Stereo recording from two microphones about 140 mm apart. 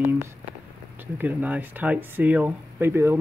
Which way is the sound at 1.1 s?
10° right (ahead or behind).